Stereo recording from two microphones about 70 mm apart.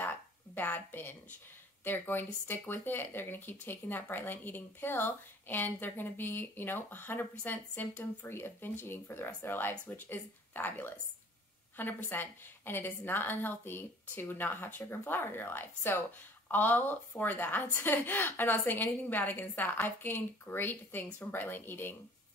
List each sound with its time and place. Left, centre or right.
0.6 s speech: left